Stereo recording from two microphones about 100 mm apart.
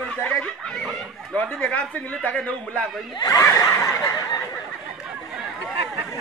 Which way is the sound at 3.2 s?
35° left (ahead or behind).